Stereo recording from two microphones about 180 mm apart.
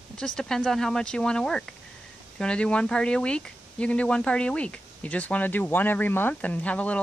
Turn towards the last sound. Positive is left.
turn(degrees=5)  # may be behind; listen again after turning